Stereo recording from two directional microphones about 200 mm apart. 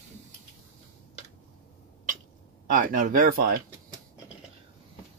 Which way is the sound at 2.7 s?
40° right (ahead or behind).